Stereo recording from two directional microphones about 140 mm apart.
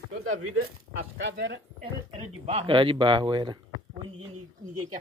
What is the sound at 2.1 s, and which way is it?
Speech, 45° right (ahead or behind).